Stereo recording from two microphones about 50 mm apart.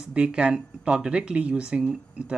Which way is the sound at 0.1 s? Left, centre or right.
Right.